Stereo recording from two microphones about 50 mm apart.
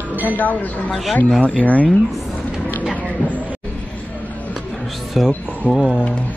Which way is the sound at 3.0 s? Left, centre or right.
Right.